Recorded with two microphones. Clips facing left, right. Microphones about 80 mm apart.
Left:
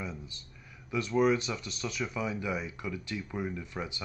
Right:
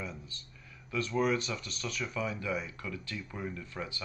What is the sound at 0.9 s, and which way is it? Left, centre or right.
Speech, centre.